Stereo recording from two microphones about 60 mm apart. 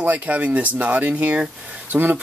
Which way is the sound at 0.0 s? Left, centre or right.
Right.